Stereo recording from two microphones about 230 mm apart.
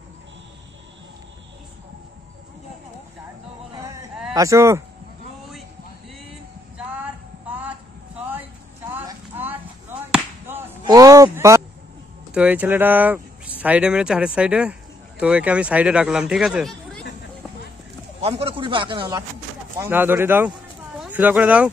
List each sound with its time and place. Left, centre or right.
4.3 s speech: centre
7.0 s a sound: centre
10.9 s a sound: centre
12.4 s speech: centre
18.2 s a man's voice: right
19.8 s speech: centre